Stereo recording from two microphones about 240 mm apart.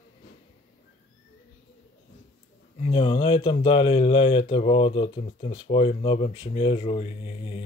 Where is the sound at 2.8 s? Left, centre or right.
Left.